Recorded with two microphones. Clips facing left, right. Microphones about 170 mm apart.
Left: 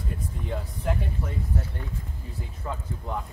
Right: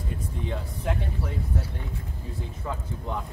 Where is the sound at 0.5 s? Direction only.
Centre (ahead or behind).